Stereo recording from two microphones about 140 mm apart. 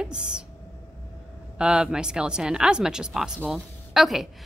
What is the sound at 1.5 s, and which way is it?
A woman's voice, 5° right (ahead or behind).